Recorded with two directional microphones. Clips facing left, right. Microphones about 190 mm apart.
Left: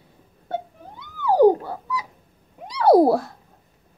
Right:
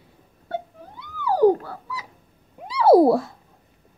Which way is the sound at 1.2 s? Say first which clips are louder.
Left 2 dB; 20° left (ahead or behind).